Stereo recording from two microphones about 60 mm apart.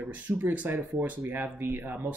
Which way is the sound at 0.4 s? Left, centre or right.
Right.